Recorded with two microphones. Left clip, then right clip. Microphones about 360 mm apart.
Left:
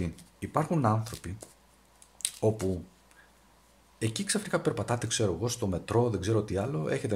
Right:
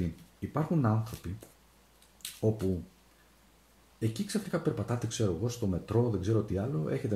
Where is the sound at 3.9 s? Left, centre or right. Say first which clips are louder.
Left 3 dB; left.